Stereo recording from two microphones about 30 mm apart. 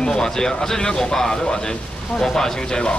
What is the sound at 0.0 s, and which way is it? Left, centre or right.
Speech, left.